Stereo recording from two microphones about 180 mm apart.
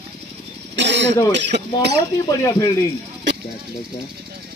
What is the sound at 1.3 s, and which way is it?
Speech, 75° right (ahead or behind).